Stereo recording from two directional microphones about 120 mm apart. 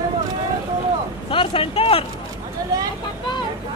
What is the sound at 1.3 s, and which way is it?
Speech, 45° left (ahead or behind).